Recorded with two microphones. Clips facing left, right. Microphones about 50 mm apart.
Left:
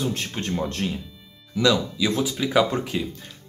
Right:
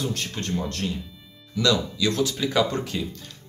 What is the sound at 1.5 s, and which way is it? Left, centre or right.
Speech, centre.